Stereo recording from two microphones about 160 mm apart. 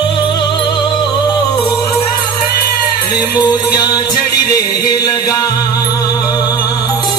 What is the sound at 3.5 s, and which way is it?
Music, 25° left (ahead or behind).